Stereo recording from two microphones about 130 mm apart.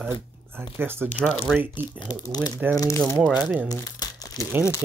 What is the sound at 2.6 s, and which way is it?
Speech, 10° right (ahead or behind).